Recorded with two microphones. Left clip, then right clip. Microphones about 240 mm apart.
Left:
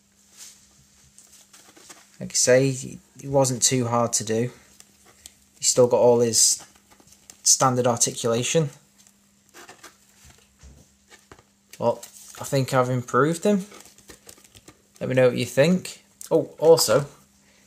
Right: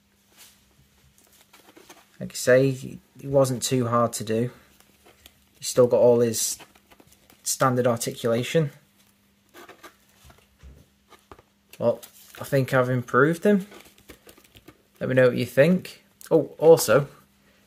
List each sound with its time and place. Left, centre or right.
2.1 s speech: centre
5.6 s speech: centre
9.5 s a sound: centre
11.8 s speech: centre
15.0 s speech: centre
16.3 s speech: centre